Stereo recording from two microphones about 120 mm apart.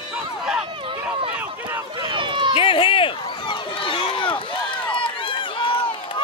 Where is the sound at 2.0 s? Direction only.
40° right (ahead or behind).